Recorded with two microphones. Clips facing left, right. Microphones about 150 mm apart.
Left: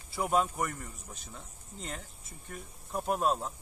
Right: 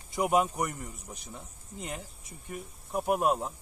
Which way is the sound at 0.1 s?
15° right (ahead or behind).